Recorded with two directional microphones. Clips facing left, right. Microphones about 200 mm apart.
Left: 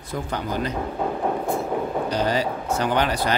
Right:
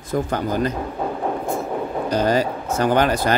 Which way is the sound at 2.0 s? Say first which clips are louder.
Right 7 dB; 45° right (ahead or behind).